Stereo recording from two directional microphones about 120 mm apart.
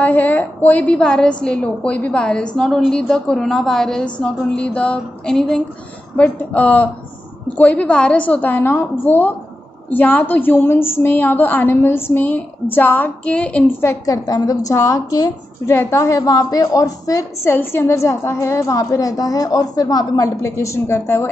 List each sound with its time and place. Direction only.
0.0 s a woman's voice: 15° left (ahead or behind)